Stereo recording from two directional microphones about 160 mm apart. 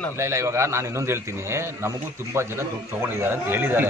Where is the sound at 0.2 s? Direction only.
15° right (ahead or behind).